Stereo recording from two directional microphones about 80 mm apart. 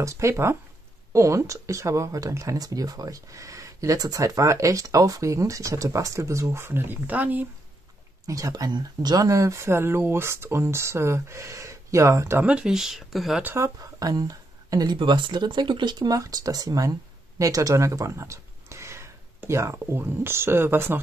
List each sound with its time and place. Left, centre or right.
0.0 s speech: right
8.3 s speech: right
9.2 s speech: right
12.4 s speech: centre
13.4 s speech: right
13.7 s speech: right
15.0 s speech: right
16.1 s speech: right